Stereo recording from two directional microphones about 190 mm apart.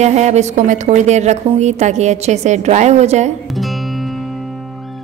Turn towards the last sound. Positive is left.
turn(degrees=-35)  # may be behind; listen again after turning